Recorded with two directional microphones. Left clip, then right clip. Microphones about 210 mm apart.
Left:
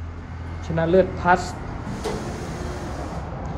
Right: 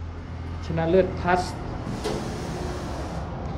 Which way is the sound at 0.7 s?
10° left (ahead or behind).